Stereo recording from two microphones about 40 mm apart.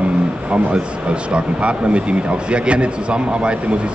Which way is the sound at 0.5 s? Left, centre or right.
Right.